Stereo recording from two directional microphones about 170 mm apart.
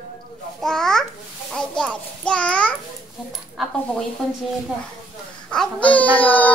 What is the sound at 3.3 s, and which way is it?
Child singing, centre (ahead or behind).